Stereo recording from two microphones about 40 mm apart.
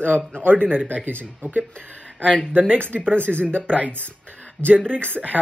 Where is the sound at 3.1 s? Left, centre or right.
Right.